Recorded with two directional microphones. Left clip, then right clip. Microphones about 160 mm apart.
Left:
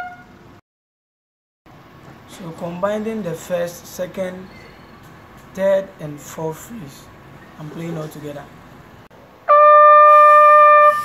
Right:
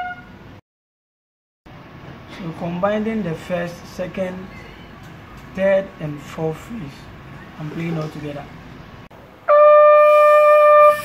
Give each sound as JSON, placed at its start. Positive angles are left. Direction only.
{"t": 2.8, "sound": "speech", "side_deg": 35}
{"t": 5.6, "sound": "speech", "side_deg": 35}
{"t": 9.5, "sound": "wind instrument", "side_deg": 50}